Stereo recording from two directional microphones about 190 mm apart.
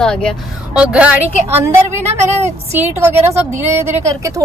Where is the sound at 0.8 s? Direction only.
5° right (ahead or behind).